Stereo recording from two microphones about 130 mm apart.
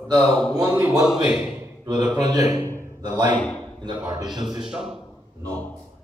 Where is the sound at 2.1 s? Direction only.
30° right (ahead or behind).